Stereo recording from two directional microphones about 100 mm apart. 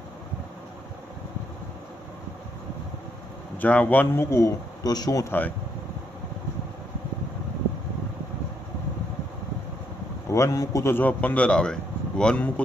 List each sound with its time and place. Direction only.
3.5 s a man's voice: 15° left (ahead or behind); by 5.2 s 40° left (ahead or behind)
5.2 s a man's voice: 20° left (ahead or behind)
10.3 s a man's voice: 35° left (ahead or behind); by 12.6 s 10° left (ahead or behind)